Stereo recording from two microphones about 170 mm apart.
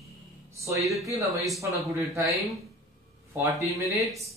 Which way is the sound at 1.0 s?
20° right (ahead or behind).